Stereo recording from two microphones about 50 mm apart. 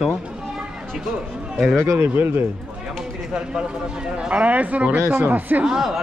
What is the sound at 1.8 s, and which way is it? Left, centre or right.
Speech, right.